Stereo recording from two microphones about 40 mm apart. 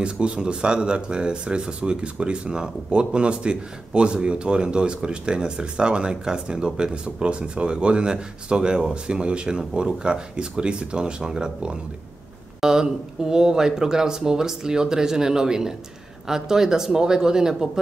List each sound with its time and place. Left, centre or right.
0.0 s speech: right